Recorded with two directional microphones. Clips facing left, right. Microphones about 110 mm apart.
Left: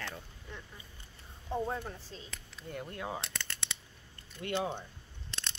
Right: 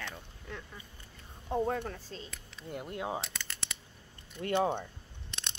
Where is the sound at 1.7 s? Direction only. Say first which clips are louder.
Right 4 dB; 60° right (ahead or behind).